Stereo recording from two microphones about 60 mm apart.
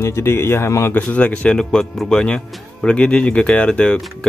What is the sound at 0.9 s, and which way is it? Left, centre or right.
Speech, left.